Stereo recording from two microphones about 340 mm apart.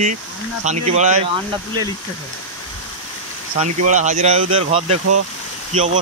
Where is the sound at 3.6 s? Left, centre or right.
Right.